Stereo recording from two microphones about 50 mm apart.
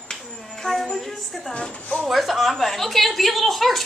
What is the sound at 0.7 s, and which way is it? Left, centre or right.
Music, centre.